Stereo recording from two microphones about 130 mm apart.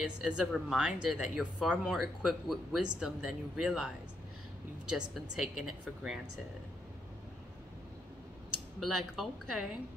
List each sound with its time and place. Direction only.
0.0 s speech: 5° right (ahead or behind)
8.7 s speech: centre (ahead or behind)